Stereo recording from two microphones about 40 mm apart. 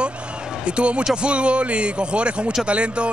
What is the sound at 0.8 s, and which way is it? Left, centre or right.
A man's voice, right.